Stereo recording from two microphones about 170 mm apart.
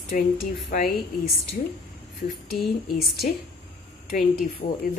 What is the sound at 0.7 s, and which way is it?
Speech, 55° left (ahead or behind).